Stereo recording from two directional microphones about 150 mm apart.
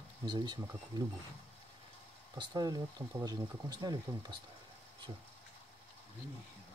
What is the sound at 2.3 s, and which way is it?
Speech, 30° right (ahead or behind).